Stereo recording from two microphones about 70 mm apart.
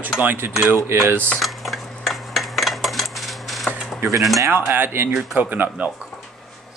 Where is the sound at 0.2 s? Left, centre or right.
Right.